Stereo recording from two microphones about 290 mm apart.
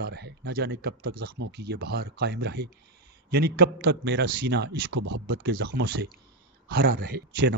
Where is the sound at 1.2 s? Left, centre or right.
Right.